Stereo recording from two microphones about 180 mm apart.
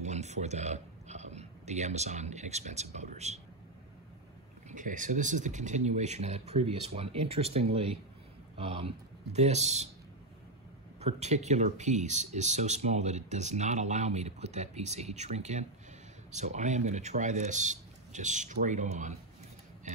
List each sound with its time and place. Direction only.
0.0 s speech: 40° right (ahead or behind)
4.6 s speech: 45° right (ahead or behind)
11.0 s speech: 35° right (ahead or behind)